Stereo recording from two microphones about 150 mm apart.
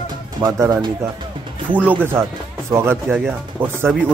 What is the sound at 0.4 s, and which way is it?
Speech, 25° right (ahead or behind).